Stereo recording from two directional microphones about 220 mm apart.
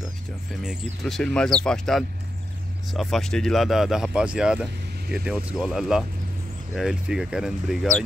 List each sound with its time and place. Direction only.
0.6 s speech: centre (ahead or behind)